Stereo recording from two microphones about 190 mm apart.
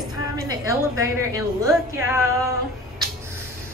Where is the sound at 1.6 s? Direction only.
15° right (ahead or behind).